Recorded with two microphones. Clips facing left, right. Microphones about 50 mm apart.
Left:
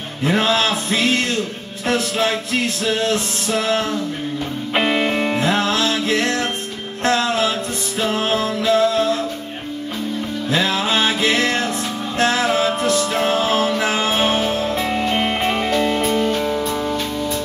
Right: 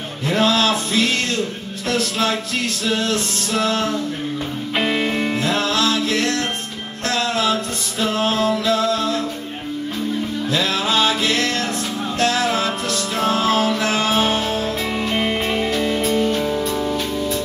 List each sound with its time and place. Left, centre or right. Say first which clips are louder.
0.2 s music: even; left
4.7 s music: left 2 dB; centre
5.4 s music: even; left
10.5 s music: left 2 dB; left
15.0 s music: left 1 dB; centre